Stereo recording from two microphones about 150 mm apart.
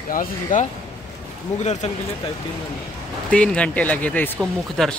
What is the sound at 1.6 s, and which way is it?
Speech, 50° left (ahead or behind).